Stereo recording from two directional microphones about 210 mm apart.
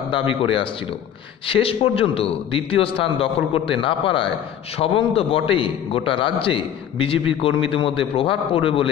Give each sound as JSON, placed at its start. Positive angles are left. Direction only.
{"t": 0.3, "sound": "a man's voice", "side_deg": 25}